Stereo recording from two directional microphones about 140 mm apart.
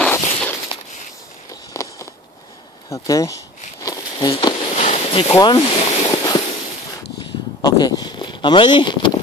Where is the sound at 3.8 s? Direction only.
25° left (ahead or behind).